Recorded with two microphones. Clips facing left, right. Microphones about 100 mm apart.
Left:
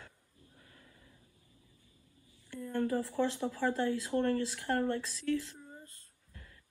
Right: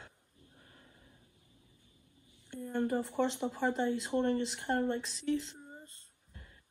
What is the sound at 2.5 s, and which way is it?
Speech, 20° right (ahead or behind).